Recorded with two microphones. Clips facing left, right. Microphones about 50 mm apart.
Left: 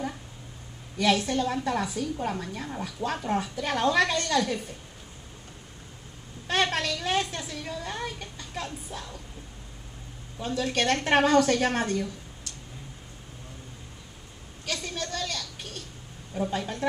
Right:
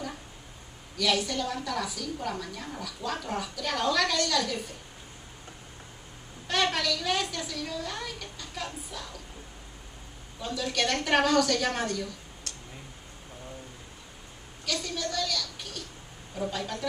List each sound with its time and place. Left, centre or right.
0.9 s a woman's voice: left
6.4 s a woman's voice: left
10.4 s a woman's voice: left
14.7 s a sound: left
16.3 s a woman's voice: left